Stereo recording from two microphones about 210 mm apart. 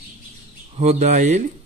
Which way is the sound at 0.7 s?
30° right (ahead or behind).